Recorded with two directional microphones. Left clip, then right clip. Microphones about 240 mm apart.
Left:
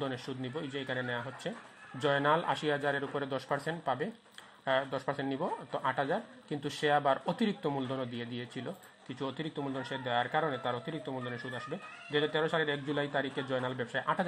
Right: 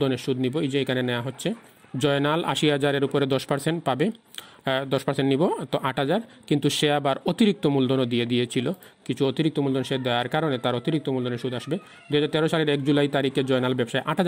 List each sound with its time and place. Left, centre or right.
0.0 s speech: right